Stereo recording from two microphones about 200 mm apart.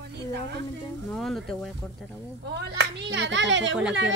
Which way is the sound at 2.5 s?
60° right (ahead or behind).